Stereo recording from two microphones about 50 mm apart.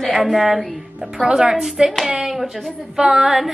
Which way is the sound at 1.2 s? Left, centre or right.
Centre.